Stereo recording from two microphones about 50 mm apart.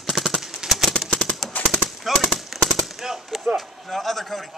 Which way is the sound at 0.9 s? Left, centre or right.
Centre.